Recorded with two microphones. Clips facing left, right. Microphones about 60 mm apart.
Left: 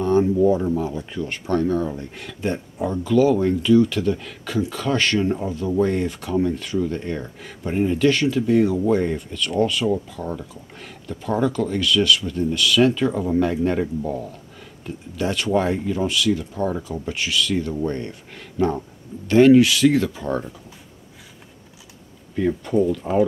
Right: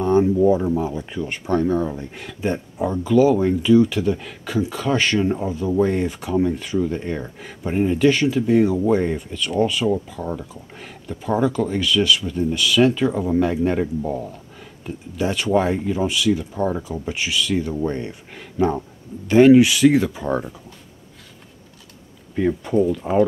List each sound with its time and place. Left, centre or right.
0.0 s speech: centre
15.1 s speech: centre
22.5 s speech: centre